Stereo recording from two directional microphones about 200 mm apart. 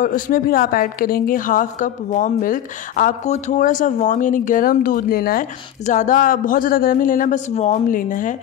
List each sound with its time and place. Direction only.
0.0 s a woman's voice: 45° left (ahead or behind)